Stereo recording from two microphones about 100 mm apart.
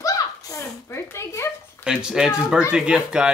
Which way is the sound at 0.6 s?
25° left (ahead or behind).